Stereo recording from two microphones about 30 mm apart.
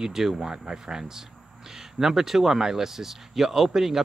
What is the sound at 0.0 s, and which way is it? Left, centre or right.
Speech, centre.